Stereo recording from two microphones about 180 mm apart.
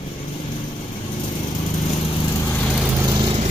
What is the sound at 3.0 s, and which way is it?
Vehicle, 25° right (ahead or behind).